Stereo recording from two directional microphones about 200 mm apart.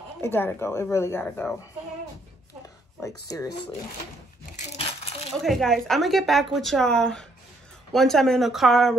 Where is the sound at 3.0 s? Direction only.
15° left (ahead or behind).